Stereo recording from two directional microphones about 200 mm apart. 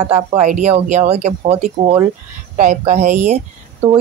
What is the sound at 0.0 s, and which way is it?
Speech, 35° right (ahead or behind).